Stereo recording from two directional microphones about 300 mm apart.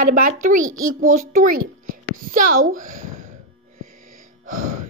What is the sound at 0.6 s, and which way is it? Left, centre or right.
Speech, right.